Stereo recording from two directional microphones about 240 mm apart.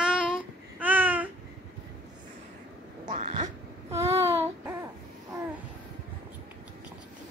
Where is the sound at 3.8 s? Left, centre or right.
Centre.